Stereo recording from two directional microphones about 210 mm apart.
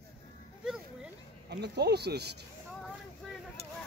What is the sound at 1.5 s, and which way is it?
Speech, 50° right (ahead or behind).